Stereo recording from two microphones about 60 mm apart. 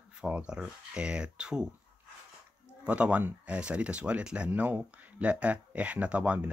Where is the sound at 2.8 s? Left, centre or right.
Right.